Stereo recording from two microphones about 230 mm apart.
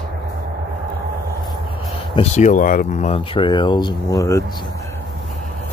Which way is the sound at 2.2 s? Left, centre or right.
Left.